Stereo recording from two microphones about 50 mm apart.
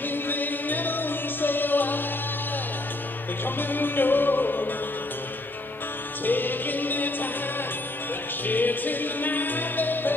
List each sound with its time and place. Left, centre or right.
0.1 s music: left
3.4 s music: left
6.2 s music: left
8.5 s music: left